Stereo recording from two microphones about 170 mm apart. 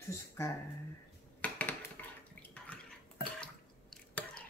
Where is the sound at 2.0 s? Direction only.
10° left (ahead or behind).